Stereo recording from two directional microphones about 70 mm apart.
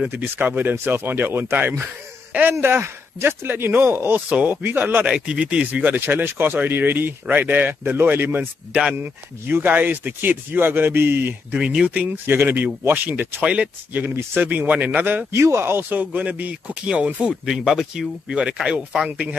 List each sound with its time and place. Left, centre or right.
0.0 s speech: right
4.3 s speech: centre
5.1 s speech: centre; by 11.3 s right
11.5 s speech: centre
12.3 s speech: right
13.4 s speech: centre
15.3 s speech: right